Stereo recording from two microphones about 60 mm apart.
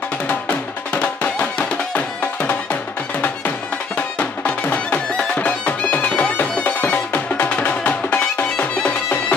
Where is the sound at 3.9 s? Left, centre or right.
Left.